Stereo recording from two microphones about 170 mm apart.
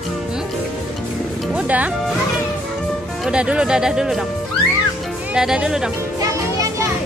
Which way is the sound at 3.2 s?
5° right (ahead or behind).